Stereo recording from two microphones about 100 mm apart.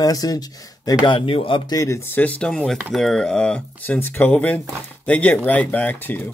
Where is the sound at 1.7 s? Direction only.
30° left (ahead or behind).